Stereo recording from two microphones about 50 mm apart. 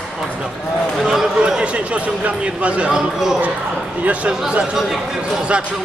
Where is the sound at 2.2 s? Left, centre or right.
Right.